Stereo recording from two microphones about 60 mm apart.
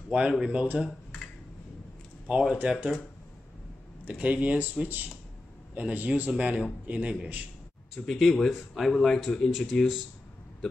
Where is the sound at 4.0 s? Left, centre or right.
Right.